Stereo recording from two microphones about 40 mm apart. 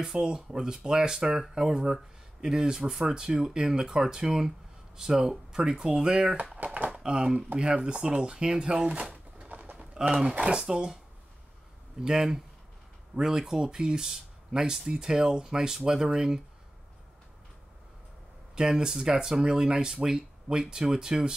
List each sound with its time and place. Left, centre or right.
0.0 s speech: centre
5.5 s speech: centre
6.6 s speech: right
6.9 s a sound: centre
7.5 s speech: right
9.4 s bird: right
9.8 s bird: centre
10.2 s speech: right
10.6 s speech: centre
12.0 s speech: centre
18.5 s speech: centre